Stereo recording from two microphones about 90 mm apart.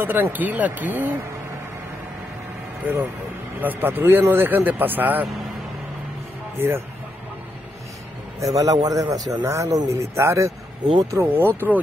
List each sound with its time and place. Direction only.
0.0 s speech: 20° right (ahead or behind)
3.6 s speech: 20° right (ahead or behind)
6.6 s speech: 25° right (ahead or behind)
8.4 s speech: 40° right (ahead or behind)
9.4 s speech: 35° right (ahead or behind)